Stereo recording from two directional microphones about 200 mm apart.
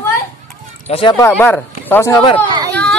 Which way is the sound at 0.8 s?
30° left (ahead or behind).